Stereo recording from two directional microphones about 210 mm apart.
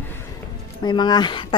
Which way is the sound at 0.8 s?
20° left (ahead or behind).